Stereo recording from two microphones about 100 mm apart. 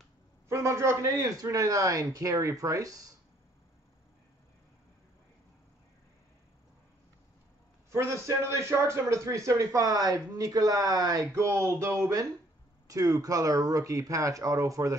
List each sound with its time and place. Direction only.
0.5 s speech: 30° right (ahead or behind)
7.9 s speech: 30° right (ahead or behind)